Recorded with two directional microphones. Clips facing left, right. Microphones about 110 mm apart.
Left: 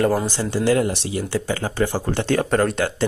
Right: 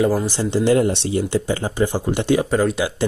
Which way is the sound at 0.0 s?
Centre (ahead or behind).